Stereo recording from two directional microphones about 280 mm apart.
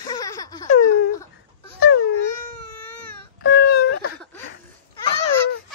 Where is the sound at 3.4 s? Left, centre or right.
Left.